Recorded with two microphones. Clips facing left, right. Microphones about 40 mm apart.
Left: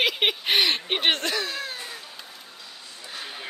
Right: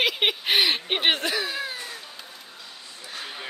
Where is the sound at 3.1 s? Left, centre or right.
Centre.